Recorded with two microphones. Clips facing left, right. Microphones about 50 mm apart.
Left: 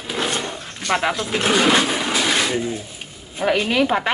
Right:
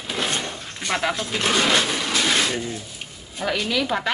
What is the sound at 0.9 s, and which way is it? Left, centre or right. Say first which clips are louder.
Speech: left 4 dB; centre.